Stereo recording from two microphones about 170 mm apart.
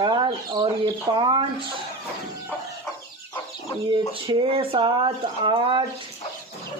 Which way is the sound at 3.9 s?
30° right (ahead or behind).